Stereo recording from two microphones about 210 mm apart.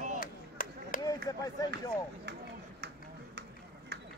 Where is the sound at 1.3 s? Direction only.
20° left (ahead or behind).